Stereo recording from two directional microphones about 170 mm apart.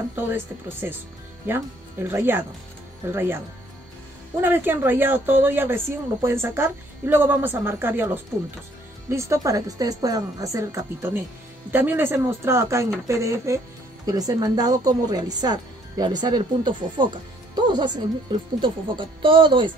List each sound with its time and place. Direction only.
0.1 s a woman's voice: 10° right (ahead or behind); by 19.7 s 30° right (ahead or behind)